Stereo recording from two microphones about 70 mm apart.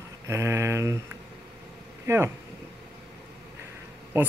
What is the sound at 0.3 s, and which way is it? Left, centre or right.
Speech, right.